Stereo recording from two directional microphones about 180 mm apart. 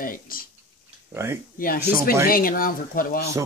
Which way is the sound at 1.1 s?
15° right (ahead or behind).